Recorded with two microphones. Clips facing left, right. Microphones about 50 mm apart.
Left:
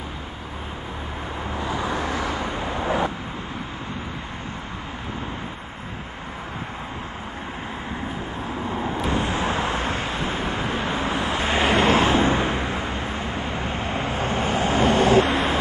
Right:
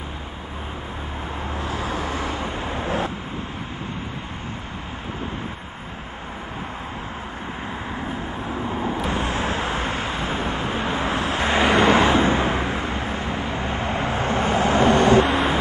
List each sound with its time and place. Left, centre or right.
2.0 s vehicle: right
8.6 s vehicle: centre
9.1 s vehicle: right
9.4 s vehicle: left
10.6 s vehicle: centre
11.1 s vehicle: right
12.1 s vehicle: right
15.0 s vehicle: right
15.3 s vehicle: right